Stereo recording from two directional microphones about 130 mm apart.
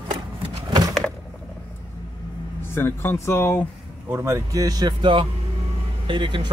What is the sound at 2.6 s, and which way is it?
Speech, 15° left (ahead or behind).